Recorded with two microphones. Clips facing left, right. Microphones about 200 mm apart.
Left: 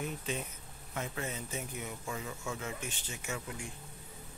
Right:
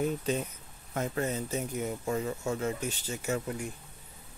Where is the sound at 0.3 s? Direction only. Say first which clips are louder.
Right 7 dB; 40° right (ahead or behind).